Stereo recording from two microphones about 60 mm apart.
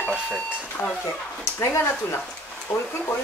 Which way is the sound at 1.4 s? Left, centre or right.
Left.